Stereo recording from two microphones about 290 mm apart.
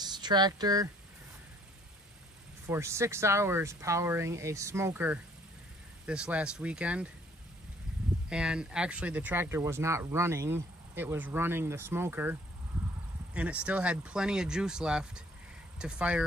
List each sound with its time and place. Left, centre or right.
0.0 s speech: centre
2.6 s speech: centre
8.3 s speech: centre